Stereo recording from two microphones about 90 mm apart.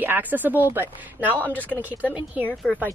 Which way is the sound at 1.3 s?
20° left (ahead or behind).